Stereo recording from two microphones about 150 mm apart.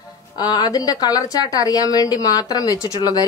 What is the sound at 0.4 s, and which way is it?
A woman's voice, 25° left (ahead or behind).